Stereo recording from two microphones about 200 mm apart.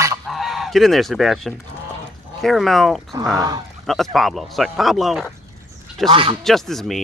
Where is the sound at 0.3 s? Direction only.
Centre (ahead or behind).